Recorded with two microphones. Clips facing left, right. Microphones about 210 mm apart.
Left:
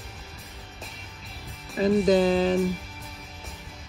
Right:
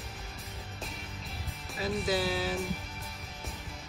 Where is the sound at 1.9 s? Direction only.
5° right (ahead or behind).